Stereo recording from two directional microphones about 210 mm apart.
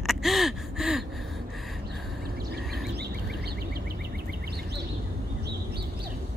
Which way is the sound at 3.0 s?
50° right (ahead or behind).